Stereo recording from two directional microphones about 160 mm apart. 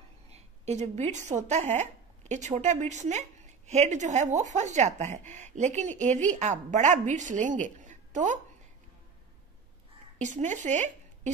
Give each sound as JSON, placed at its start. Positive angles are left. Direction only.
{"t": 0.3, "sound": "speech", "side_deg": -45}
{"t": 10.2, "sound": "speech", "side_deg": -50}